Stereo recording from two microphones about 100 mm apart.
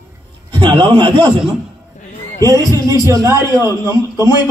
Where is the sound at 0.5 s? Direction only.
50° right (ahead or behind).